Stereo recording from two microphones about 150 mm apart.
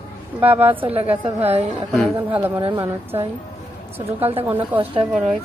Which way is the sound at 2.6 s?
35° right (ahead or behind).